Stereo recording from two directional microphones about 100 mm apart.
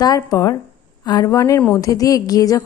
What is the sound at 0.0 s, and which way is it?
A woman's voice, 40° left (ahead or behind).